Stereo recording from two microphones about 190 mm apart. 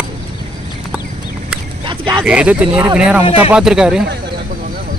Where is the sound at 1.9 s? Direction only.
25° right (ahead or behind).